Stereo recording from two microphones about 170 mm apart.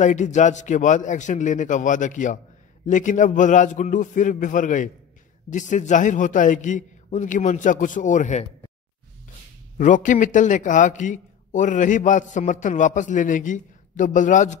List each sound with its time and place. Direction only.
0.0 s a man's voice: 45° left (ahead or behind)
9.8 s a man's voice: 50° left (ahead or behind)